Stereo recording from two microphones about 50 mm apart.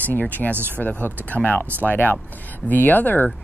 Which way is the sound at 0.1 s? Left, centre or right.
Left.